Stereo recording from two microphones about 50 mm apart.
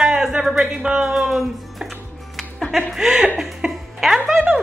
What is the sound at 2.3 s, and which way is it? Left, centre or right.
Music, centre.